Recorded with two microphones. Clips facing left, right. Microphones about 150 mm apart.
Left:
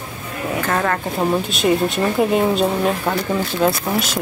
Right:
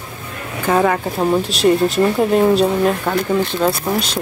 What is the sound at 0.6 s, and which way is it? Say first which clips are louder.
A woman's voice: right 7 dB; 10° right (ahead or behind).